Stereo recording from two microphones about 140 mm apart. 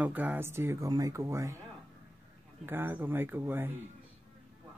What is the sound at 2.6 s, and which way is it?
Speech, 15° right (ahead or behind).